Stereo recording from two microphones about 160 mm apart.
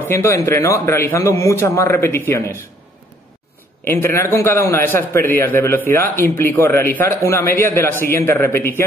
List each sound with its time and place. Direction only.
0.1 s a man's voice: 15° left (ahead or behind)
3.8 s a man's voice: 15° left (ahead or behind)